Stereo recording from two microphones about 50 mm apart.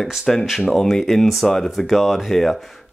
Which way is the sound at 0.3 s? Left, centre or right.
Centre.